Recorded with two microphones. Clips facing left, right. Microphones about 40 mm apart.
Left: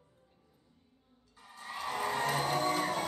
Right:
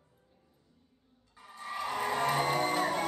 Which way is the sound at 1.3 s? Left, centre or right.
Centre.